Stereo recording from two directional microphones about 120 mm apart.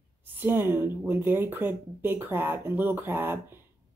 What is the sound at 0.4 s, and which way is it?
Speech, 15° right (ahead or behind).